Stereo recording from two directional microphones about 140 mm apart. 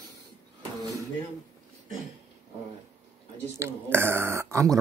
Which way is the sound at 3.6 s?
15° right (ahead or behind).